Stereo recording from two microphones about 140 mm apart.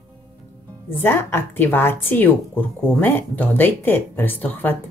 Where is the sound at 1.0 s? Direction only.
15° left (ahead or behind).